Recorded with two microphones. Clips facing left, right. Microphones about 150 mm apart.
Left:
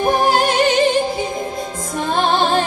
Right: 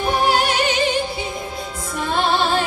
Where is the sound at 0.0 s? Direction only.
45° left (ahead or behind).